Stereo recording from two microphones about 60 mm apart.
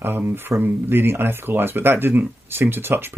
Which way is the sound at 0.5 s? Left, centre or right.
Right.